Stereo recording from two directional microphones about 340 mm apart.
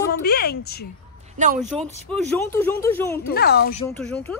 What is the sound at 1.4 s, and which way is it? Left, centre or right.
Speech, right.